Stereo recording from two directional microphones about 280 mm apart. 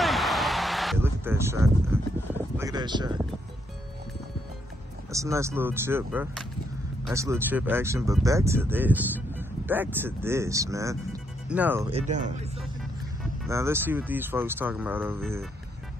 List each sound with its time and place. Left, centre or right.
0.0 s a sound: centre
5.1 s speech: centre
11.9 s speech: right
13.5 s speech: centre